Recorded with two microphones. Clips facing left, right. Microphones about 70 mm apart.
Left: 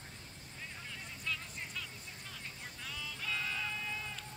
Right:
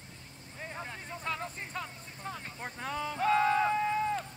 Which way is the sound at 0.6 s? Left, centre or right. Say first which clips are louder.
Right 7 dB; right.